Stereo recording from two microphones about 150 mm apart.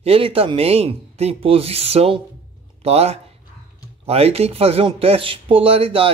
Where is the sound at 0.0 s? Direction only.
40° right (ahead or behind).